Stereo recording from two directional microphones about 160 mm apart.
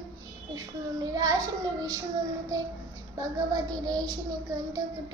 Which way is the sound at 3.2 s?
25° right (ahead or behind).